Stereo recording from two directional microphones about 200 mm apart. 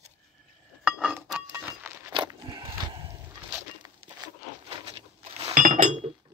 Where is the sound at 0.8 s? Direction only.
5° right (ahead or behind).